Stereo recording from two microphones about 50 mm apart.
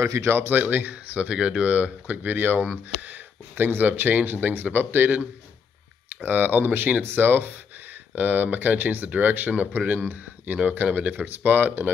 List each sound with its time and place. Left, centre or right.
0.0 s speech: right
0.5 s speech: right
8.1 s speech: right